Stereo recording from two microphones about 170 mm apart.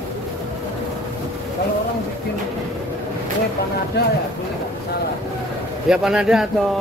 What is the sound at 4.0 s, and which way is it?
Speech, 70° left (ahead or behind).